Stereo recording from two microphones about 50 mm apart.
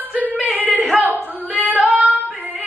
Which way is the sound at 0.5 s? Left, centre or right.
Right.